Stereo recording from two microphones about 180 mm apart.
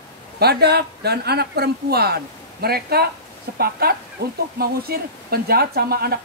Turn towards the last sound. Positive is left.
turn(degrees=-60)  # may be behind; listen again after turning